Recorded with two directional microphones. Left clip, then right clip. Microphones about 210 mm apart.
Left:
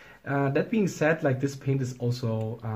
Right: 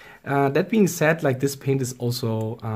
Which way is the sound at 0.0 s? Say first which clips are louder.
Right 6 dB; 40° right (ahead or behind).